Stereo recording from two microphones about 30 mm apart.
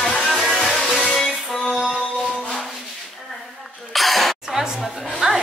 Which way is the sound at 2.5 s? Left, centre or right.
Centre.